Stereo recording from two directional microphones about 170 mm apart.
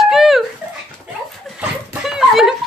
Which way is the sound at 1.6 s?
5° right (ahead or behind).